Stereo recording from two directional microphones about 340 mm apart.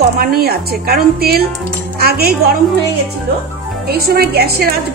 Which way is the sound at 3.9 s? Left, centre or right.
Right.